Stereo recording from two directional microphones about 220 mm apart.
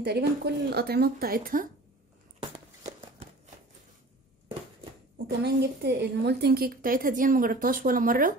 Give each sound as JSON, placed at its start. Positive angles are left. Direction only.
{"t": 0.0, "sound": "speech", "side_deg": -50}
{"t": 2.5, "sound": "a sound", "side_deg": -30}
{"t": 5.2, "sound": "a woman's voice", "side_deg": -50}